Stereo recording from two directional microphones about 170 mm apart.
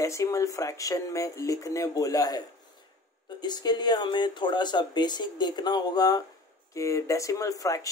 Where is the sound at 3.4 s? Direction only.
25° left (ahead or behind).